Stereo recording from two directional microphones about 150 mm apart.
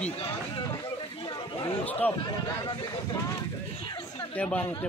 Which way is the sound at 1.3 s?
35° left (ahead or behind).